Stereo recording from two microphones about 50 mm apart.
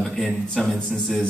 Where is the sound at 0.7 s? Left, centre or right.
Left.